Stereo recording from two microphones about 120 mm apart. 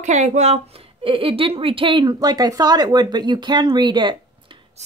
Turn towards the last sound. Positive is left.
turn(degrees=-40)  # may be behind; listen again after turning